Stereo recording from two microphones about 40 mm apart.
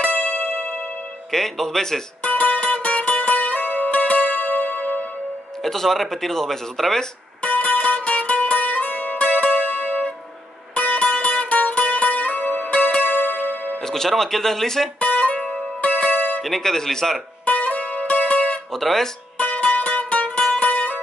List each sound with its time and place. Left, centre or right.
0.0 s music: left
1.3 s speech: centre
2.2 s music: left
5.6 s speech: centre
7.4 s music: left
13.0 s music: left
13.7 s speech: centre
15.0 s music: left
16.4 s speech: centre
17.5 s music: left
18.7 s speech: centre
19.3 s music: left
20.2 s music: left